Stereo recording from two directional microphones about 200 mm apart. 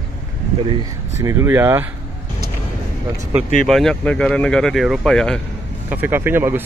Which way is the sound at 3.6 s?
Centre (ahead or behind).